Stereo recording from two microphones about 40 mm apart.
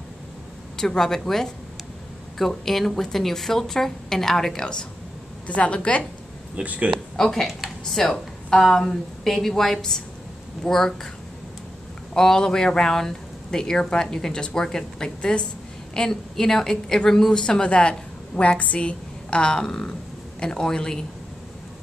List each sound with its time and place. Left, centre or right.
0.7 s speech: centre
5.5 s a woman's voice: left
6.5 s speech: right
7.2 s speech: centre
12.1 s a woman's voice: centre